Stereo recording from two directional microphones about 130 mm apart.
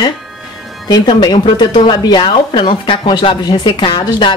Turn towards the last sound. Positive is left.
turn(degrees=40)  # may be behind; listen again after turning